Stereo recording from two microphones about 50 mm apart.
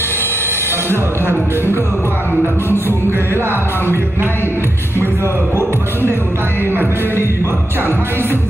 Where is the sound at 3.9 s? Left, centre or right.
Right.